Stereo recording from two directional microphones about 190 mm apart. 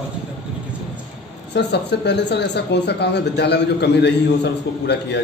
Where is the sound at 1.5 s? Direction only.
65° left (ahead or behind).